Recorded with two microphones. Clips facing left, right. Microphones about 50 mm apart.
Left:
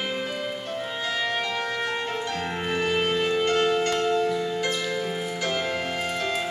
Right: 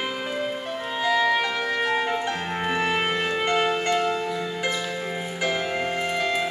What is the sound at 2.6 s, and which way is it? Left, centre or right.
Music, centre.